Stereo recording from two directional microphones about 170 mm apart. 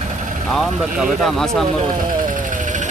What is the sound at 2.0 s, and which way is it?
Vehicle, 55° right (ahead or behind).